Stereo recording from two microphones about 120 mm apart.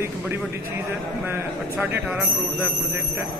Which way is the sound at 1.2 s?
20° right (ahead or behind).